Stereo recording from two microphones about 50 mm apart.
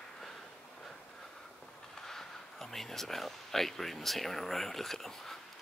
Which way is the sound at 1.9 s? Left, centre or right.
Centre.